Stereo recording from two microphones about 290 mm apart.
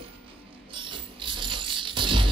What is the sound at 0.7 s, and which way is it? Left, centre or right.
Music, centre.